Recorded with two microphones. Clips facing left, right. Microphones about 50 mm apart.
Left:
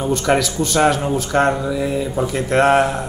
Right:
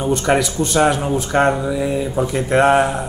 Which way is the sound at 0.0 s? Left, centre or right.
Centre.